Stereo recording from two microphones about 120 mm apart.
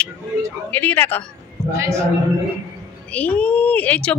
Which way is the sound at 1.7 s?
25° right (ahead or behind).